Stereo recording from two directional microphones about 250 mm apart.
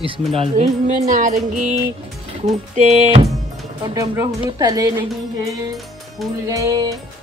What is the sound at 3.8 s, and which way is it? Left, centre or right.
Speech, centre.